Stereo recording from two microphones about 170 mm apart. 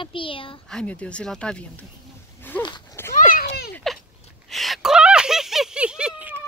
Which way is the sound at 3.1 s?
50° left (ahead or behind).